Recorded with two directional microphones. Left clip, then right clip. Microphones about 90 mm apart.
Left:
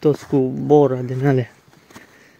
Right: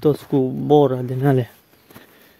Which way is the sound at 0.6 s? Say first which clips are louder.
Left 1 dB; 40° right (ahead or behind).